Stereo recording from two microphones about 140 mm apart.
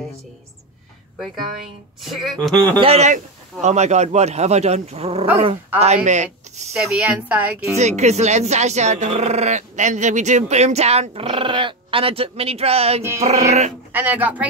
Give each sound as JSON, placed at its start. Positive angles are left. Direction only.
{"t": 2.0, "sound": "speech", "side_deg": 0}
{"t": 2.5, "sound": "a man's voice", "side_deg": 10}
{"t": 2.8, "sound": "speech", "side_deg": -50}
{"t": 6.0, "sound": "speech", "side_deg": -60}
{"t": 6.7, "sound": "speech", "side_deg": -15}
{"t": 7.7, "sound": "speech", "side_deg": -55}
{"t": 13.9, "sound": "speech", "side_deg": -10}